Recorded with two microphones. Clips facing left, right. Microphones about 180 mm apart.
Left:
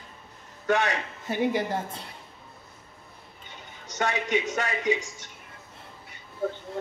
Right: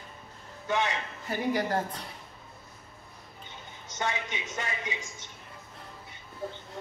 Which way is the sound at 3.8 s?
70° left (ahead or behind).